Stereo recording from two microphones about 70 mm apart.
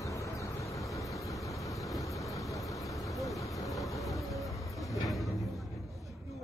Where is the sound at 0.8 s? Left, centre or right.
Centre.